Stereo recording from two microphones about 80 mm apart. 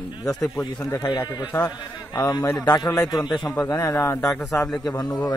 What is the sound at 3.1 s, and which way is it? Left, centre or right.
Speech, left.